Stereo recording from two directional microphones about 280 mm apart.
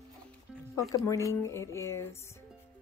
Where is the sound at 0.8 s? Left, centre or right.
Centre.